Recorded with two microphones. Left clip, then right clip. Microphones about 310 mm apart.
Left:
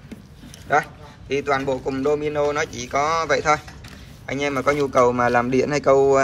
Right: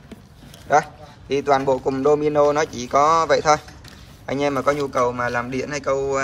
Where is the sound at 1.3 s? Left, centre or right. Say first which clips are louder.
Right 3 dB; centre.